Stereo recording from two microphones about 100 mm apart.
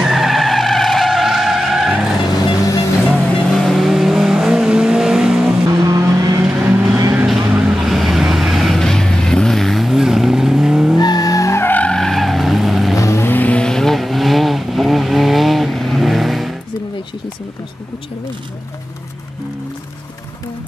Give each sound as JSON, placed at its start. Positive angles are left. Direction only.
{"t": 0.0, "sound": "skidding", "side_deg": 0}
{"t": 3.3, "sound": "vehicle", "side_deg": 5}
{"t": 5.5, "sound": "vehicle", "side_deg": -30}
{"t": 7.2, "sound": "vehicle", "side_deg": -5}
{"t": 11.0, "sound": "vehicle", "side_deg": 40}
{"t": 12.9, "sound": "vehicle", "side_deg": 30}